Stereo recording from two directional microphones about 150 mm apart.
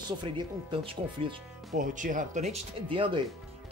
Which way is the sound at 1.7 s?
60° right (ahead or behind).